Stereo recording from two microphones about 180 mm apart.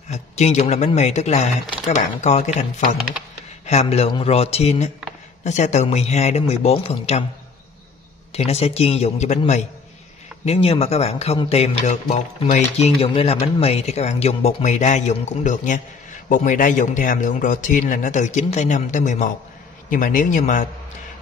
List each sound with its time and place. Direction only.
0.1 s a man's voice: 40° left (ahead or behind)
8.3 s a man's voice: 35° left (ahead or behind)
10.4 s a man's voice: 35° left (ahead or behind)